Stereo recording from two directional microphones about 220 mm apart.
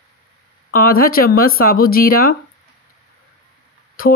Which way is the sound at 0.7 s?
40° left (ahead or behind).